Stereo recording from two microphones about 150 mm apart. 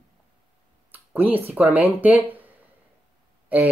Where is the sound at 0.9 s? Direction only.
10° right (ahead or behind).